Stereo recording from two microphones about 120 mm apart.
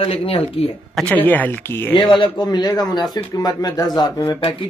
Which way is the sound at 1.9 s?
40° left (ahead or behind).